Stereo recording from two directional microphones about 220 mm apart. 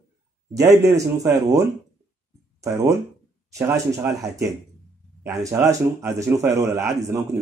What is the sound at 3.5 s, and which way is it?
A man's voice, 15° right (ahead or behind).